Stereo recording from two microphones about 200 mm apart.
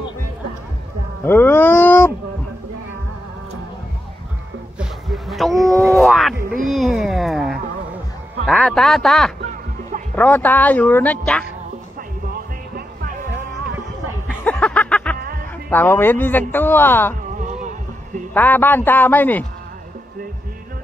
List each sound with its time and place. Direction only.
1.2 s speech: 10° left (ahead or behind)
4.7 s a sound: centre (ahead or behind)
5.9 s wail: centre (ahead or behind)
6.7 s a sound: centre (ahead or behind)
8.5 s speech: centre (ahead or behind)
12.3 s music: 50° right (ahead or behind)
14.4 s music: 5° left (ahead or behind)
15.1 s music: 50° right (ahead or behind)
15.7 s speech: 10° left (ahead or behind)
17.3 s music: 40° right (ahead or behind)
18.3 s speech: 10° left (ahead or behind)